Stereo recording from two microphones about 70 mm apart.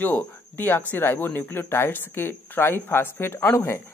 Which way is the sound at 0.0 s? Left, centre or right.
Left.